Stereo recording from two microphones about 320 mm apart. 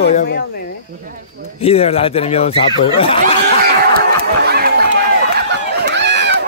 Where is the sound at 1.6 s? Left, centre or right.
Centre.